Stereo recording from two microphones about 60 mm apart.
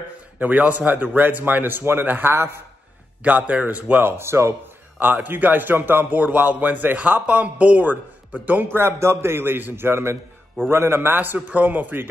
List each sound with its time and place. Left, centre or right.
0.4 s a man's voice: right
3.3 s a man's voice: right
4.2 s a man's voice: right
4.9 s a man's voice: right
8.7 s a man's voice: right